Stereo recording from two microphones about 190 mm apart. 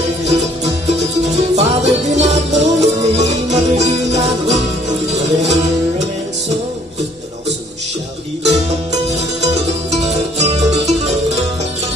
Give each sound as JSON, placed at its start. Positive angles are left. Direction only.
{"t": 1.2, "sound": "music", "side_deg": -35}
{"t": 9.4, "sound": "music", "side_deg": -35}